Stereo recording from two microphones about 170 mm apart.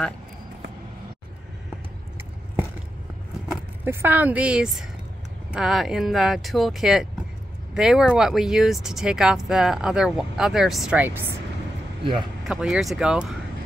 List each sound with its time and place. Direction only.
3.8 s a woman's voice: 10° right (ahead or behind)
12.0 s speech: 30° right (ahead or behind)
12.4 s speech: 5° right (ahead or behind)